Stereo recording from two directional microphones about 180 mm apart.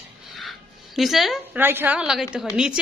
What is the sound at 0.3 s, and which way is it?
A woman's voice, centre (ahead or behind).